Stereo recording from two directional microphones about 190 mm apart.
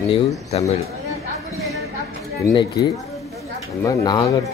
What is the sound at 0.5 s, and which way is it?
Speech, 35° left (ahead or behind).